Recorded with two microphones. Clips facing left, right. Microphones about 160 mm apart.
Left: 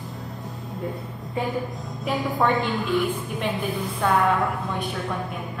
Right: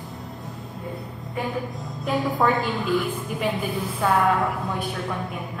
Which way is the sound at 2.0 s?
Centre (ahead or behind).